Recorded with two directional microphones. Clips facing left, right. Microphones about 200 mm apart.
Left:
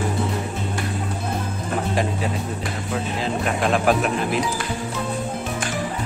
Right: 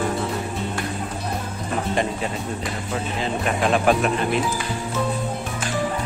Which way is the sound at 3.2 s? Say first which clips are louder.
Right 1 dB; centre (ahead or behind).